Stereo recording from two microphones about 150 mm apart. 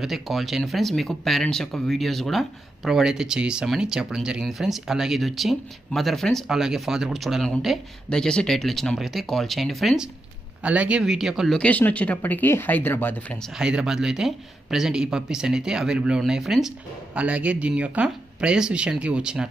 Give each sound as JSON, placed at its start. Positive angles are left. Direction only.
{"t": 0.0, "sound": "speech", "side_deg": 0}
{"t": 13.6, "sound": "speech", "side_deg": -5}